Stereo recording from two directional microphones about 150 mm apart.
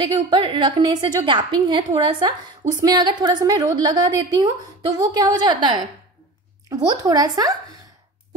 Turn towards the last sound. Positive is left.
turn(degrees=-25)  # may be behind; listen again after turning